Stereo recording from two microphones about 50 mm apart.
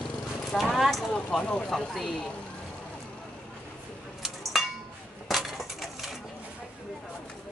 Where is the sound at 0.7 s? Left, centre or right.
Centre.